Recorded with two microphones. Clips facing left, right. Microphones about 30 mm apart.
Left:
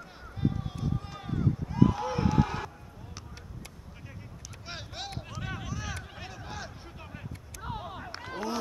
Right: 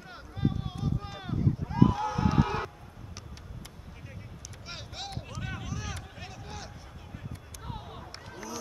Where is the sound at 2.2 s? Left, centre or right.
Centre.